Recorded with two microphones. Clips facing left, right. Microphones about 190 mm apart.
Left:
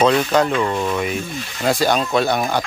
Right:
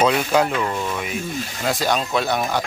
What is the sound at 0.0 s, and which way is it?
Speech, 10° right (ahead or behind).